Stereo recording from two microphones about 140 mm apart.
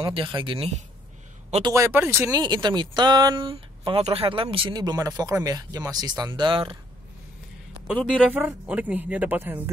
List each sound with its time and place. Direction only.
0.0 s speech: 35° right (ahead or behind)
1.6 s speech: 20° right (ahead or behind)
2.4 s speech: 30° right (ahead or behind)
7.8 s speech: 5° right (ahead or behind)